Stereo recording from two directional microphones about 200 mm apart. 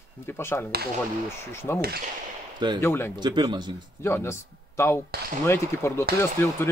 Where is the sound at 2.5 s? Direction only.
20° right (ahead or behind).